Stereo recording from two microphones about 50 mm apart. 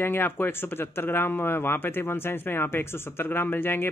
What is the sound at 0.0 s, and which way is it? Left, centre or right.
Speech, left.